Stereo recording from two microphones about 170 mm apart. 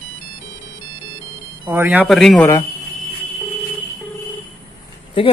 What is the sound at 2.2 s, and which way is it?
Speech, 5° left (ahead or behind).